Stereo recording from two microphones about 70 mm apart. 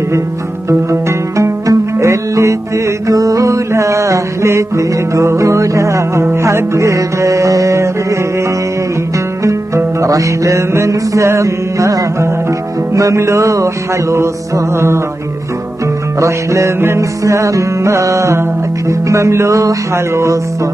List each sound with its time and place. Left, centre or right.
1.3 s music: right
3.1 s music: right
10.0 s music: right
16.2 s music: right